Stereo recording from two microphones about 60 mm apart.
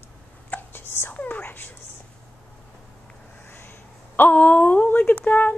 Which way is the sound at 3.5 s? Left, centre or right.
Left.